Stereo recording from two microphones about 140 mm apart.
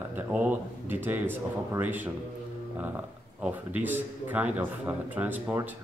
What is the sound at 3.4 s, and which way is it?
A man's voice, 10° right (ahead or behind).